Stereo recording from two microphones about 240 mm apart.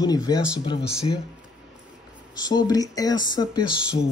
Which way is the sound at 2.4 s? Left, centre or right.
Centre.